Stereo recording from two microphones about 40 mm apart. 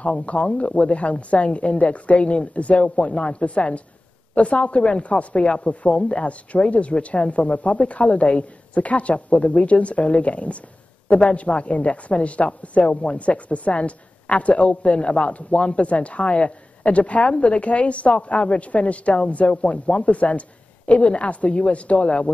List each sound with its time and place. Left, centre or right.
0.2 s speech: left